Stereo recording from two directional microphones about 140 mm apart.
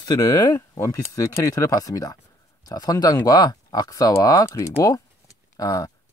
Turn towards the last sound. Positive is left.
turn(degrees=25)  # may be behind; listen again after turning